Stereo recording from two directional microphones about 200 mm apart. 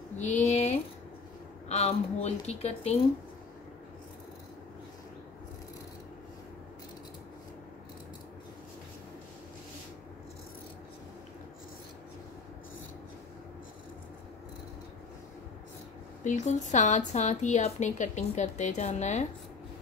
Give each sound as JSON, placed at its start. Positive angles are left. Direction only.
{"t": 0.2, "sound": "speech", "side_deg": 35}
{"t": 16.3, "sound": "speech", "side_deg": 35}